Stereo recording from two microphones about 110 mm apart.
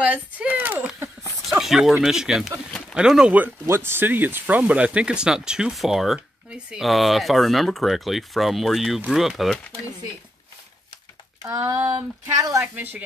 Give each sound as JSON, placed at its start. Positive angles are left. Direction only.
{"t": 0.0, "sound": "speech", "side_deg": -10}
{"t": 1.5, "sound": "speech", "side_deg": -5}
{"t": 3.6, "sound": "speech", "side_deg": -20}
{"t": 11.5, "sound": "speech", "side_deg": -25}
{"t": 12.7, "sound": "speech", "side_deg": -15}